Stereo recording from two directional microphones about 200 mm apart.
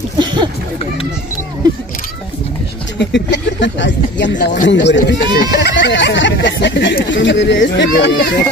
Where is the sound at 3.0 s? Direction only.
60° left (ahead or behind).